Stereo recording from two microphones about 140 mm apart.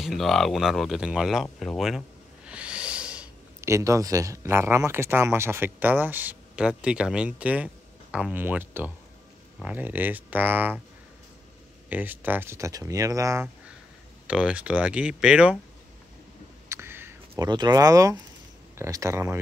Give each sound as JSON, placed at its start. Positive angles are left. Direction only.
{"t": 0.0, "sound": "speech", "side_deg": 0}
{"t": 3.6, "sound": "speech", "side_deg": -20}
{"t": 11.9, "sound": "speech", "side_deg": -15}
{"t": 14.2, "sound": "speech", "side_deg": -5}
{"t": 16.6, "sound": "a sound", "side_deg": -20}
{"t": 17.5, "sound": "speech", "side_deg": -30}